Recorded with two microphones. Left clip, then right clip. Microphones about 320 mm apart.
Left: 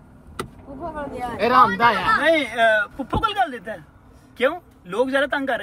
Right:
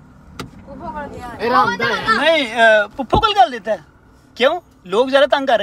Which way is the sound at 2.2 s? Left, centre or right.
Centre.